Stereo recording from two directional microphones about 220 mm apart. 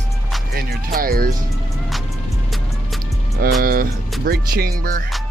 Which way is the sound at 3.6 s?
40° right (ahead or behind).